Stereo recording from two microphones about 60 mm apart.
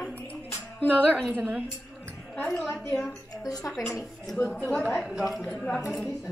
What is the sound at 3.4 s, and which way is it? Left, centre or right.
Speech, left.